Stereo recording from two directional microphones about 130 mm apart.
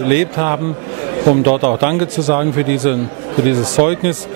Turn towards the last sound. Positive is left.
turn(degrees=-20)  # may be behind; listen again after turning